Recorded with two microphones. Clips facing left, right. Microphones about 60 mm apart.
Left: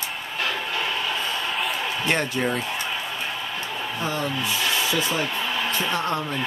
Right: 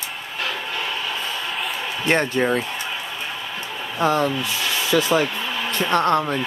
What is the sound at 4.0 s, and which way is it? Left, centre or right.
Speech, right.